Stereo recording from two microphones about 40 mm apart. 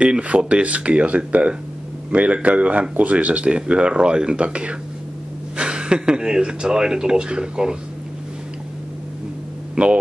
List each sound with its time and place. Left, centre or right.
0.0 s speech: right
9.8 s speech: right